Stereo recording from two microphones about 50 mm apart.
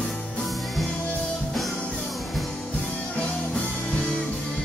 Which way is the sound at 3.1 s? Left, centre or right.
Centre.